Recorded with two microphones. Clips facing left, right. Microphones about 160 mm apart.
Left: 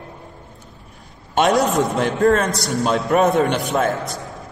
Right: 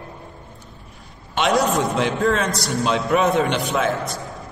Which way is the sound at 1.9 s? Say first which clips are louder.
Left 3 dB; 50° left (ahead or behind).